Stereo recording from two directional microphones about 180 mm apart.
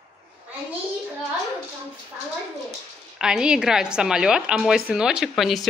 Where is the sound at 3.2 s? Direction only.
5° right (ahead or behind).